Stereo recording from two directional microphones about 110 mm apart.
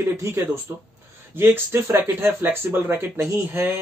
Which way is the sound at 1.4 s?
20° right (ahead or behind).